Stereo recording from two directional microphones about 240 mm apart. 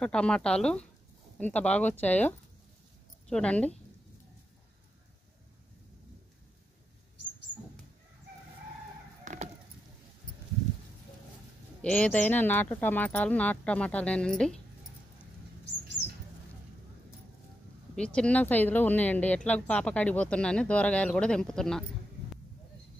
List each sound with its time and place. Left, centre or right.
0.0 s speech: centre
9.2 s chicken: right
11.8 s speech: centre
17.9 s speech: centre